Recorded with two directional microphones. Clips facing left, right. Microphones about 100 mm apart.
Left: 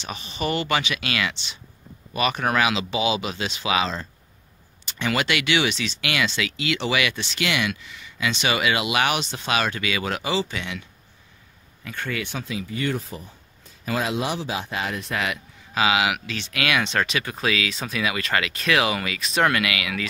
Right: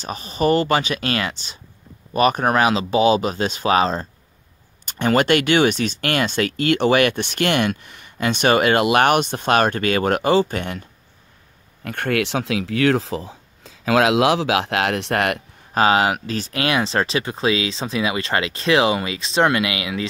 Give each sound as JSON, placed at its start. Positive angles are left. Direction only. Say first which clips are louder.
{"t": 0.0, "sound": "speech", "louder": "right 8 dB", "side_deg": -40}
{"t": 11.8, "sound": "speech", "louder": "right 8 dB", "side_deg": -60}